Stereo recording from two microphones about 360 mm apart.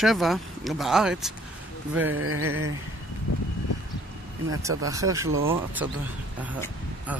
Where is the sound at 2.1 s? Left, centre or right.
Right.